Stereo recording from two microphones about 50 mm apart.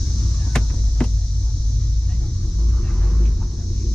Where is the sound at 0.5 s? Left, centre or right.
Centre.